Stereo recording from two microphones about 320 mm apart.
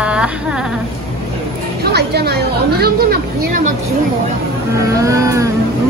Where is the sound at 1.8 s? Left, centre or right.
Right.